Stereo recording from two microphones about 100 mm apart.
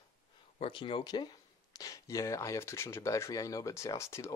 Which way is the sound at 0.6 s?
65° left (ahead or behind).